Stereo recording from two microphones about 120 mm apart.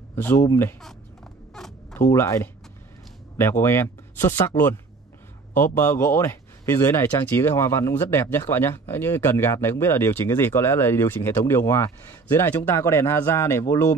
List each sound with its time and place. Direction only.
0.1 s speech: 20° left (ahead or behind)
1.5 s zipper: 5° left (ahead or behind)
2.0 s speech: 25° left (ahead or behind)